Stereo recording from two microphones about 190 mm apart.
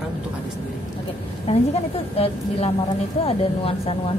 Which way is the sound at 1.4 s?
30° left (ahead or behind).